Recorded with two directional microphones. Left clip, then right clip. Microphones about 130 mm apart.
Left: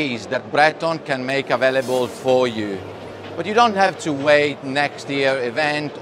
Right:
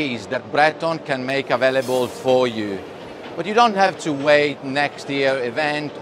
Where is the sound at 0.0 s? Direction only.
10° left (ahead or behind).